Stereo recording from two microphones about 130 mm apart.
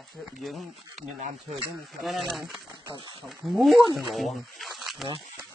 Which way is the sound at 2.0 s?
Centre (ahead or behind).